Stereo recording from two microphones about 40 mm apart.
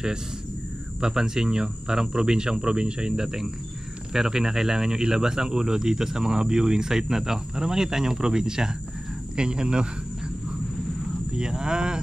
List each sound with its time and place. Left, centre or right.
1.0 s speech: centre
11.3 s speech: centre